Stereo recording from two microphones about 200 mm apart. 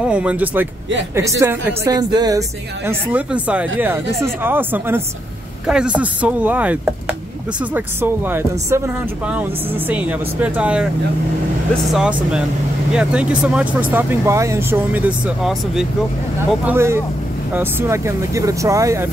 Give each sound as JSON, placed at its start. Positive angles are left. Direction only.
{"t": 0.0, "sound": "speech", "side_deg": -5}
{"t": 2.9, "sound": "speech", "side_deg": -5}